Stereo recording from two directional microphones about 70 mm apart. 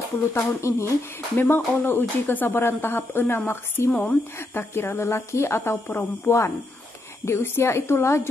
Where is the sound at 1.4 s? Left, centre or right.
Left.